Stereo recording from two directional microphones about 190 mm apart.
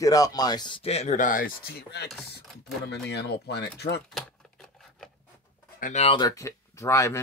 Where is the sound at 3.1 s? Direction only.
60° left (ahead or behind).